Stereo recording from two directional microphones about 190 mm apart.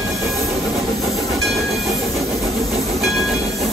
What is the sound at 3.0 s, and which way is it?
Train, centre (ahead or behind).